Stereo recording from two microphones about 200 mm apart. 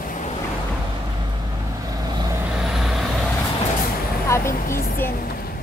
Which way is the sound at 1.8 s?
20° right (ahead or behind).